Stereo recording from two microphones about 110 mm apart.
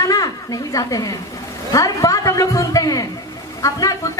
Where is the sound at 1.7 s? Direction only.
30° left (ahead or behind).